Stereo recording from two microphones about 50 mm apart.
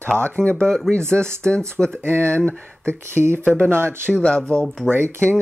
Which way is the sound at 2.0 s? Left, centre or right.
Right.